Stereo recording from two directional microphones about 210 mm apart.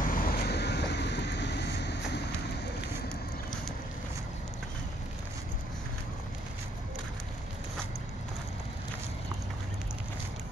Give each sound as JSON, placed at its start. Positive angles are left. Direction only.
{"t": 0.0, "sound": "vehicle", "side_deg": 40}